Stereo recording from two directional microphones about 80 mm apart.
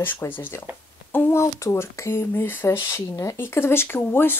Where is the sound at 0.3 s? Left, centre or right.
Left.